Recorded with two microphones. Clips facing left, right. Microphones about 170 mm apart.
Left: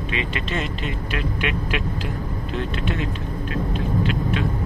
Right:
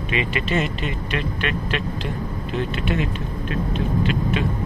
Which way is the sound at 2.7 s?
5° right (ahead or behind).